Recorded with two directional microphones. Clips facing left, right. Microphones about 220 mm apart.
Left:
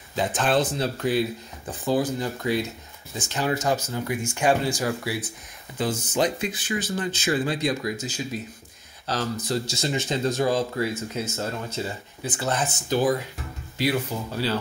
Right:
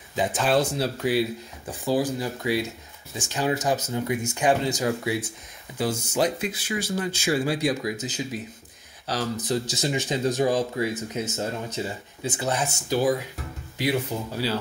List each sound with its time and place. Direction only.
0.1 s speech: 10° right (ahead or behind)
5.8 s speech: 10° right (ahead or behind)